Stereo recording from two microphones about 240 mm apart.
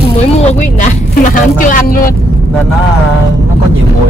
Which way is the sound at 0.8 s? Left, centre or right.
Left.